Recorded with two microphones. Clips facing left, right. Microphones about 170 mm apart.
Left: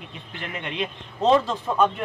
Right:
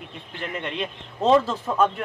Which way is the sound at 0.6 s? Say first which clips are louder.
Even; 5° left (ahead or behind).